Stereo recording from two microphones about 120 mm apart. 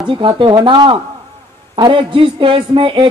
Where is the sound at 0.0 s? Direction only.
45° right (ahead or behind).